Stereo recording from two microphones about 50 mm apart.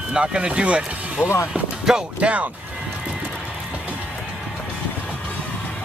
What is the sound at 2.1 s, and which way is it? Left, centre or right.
Speech, right.